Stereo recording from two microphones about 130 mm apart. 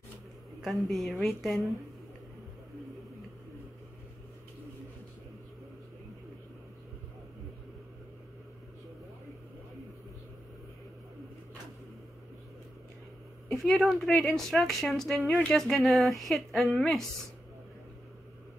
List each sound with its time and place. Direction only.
0.6 s a woman's voice: centre (ahead or behind)
13.5 s a woman's voice: centre (ahead or behind)